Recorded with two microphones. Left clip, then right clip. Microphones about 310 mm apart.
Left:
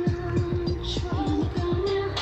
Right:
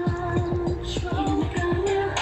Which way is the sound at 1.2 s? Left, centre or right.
Right.